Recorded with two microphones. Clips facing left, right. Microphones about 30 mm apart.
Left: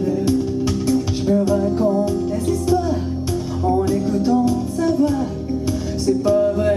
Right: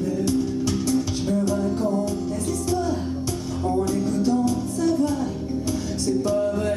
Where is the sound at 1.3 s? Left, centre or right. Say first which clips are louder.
Left 6 dB; left.